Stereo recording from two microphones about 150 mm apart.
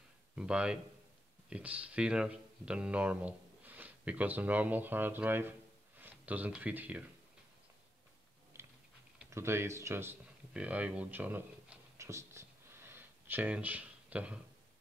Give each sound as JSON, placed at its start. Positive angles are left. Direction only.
{"t": 0.4, "sound": "speech", "side_deg": -5}
{"t": 8.5, "sound": "typing", "side_deg": -20}
{"t": 9.3, "sound": "a sound", "side_deg": -20}